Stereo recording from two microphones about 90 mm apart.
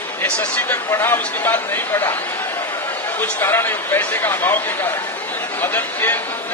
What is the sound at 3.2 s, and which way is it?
Speech, 25° left (ahead or behind).